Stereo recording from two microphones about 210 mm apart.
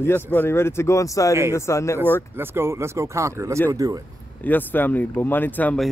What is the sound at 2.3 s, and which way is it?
Speech, 10° right (ahead or behind).